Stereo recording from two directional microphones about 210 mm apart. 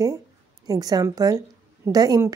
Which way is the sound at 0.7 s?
15° right (ahead or behind).